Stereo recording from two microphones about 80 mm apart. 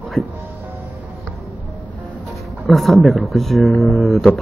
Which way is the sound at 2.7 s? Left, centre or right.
Centre.